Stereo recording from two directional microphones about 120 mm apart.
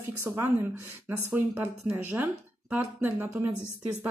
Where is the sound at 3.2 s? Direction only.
25° right (ahead or behind).